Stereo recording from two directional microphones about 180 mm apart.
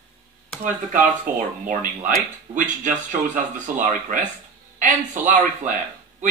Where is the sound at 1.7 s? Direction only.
45° right (ahead or behind).